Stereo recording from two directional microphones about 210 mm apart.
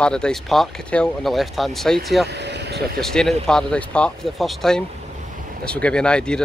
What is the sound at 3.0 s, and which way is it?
Speech, centre (ahead or behind).